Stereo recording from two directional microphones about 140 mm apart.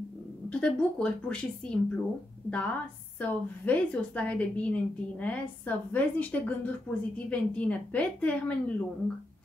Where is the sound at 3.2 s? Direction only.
10° left (ahead or behind).